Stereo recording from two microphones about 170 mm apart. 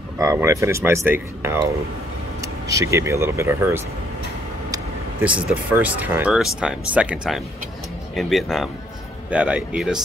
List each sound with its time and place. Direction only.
0.2 s speech: 20° right (ahead or behind)
5.5 s speech: 10° right (ahead or behind)